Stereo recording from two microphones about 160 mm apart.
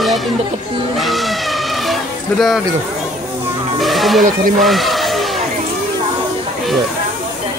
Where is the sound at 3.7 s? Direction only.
Centre (ahead or behind).